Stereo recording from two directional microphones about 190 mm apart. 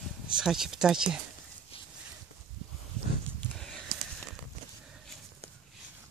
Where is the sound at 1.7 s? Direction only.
30° left (ahead or behind).